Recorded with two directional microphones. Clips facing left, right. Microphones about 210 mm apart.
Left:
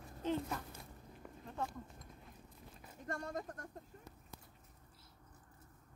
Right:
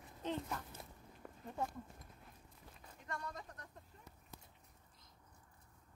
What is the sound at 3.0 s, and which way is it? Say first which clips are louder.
Speech: left 5 dB; 45° left (ahead or behind).